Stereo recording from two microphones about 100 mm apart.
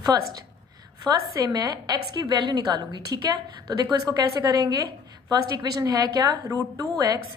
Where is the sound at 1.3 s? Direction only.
40° right (ahead or behind).